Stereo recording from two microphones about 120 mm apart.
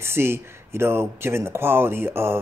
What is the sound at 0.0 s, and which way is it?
Speech, 20° right (ahead or behind).